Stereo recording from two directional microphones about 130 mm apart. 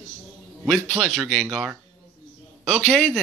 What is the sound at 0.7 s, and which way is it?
Speech, centre (ahead or behind).